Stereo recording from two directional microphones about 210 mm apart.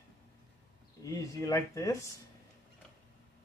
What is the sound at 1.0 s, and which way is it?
Speech, 15° left (ahead or behind).